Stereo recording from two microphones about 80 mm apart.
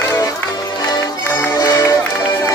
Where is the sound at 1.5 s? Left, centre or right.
Left.